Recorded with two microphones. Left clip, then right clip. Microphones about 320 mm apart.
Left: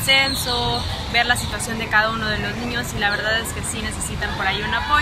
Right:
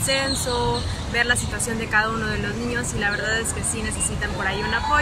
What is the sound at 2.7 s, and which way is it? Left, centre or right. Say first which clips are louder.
Speech: left 3 dB; centre.